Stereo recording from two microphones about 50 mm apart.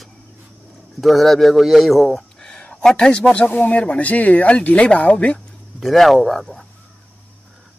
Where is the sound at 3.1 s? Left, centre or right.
Left.